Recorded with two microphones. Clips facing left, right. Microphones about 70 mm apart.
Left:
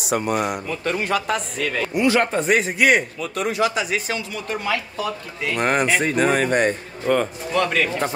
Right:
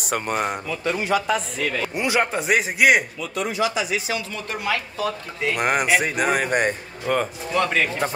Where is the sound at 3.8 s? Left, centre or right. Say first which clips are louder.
Left 1 dB; left.